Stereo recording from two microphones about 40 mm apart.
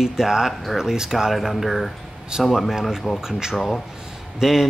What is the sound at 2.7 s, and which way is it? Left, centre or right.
Speech, centre.